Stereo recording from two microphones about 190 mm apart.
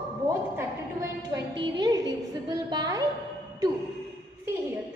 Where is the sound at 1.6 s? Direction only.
20° right (ahead or behind).